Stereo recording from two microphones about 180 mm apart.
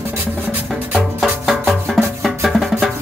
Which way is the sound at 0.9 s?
Centre (ahead or behind).